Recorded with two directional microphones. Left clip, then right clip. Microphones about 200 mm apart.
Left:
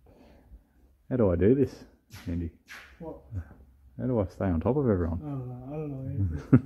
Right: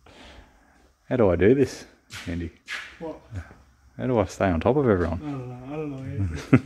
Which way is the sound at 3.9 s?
15° right (ahead or behind).